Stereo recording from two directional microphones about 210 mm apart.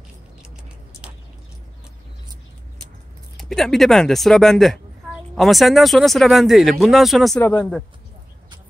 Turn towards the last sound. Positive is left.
turn(degrees=5)  # may be behind; listen again after turning